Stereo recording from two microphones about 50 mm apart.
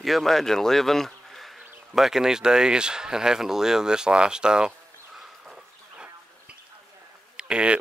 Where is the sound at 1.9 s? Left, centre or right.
Centre.